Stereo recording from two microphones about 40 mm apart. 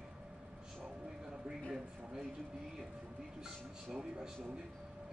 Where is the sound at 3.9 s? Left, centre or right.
Centre.